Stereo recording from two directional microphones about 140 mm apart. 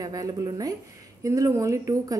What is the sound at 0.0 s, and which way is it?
Speech, 25° right (ahead or behind).